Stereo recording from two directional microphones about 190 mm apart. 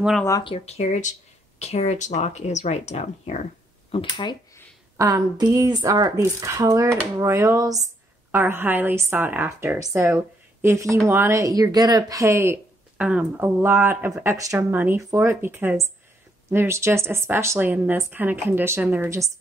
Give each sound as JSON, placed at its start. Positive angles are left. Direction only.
{"t": 0.4, "sound": "speech", "side_deg": 30}
{"t": 3.9, "sound": "speech", "side_deg": 25}
{"t": 4.9, "sound": "a woman's voice", "side_deg": -15}